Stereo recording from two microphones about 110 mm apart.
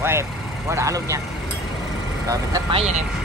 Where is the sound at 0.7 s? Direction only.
30° right (ahead or behind).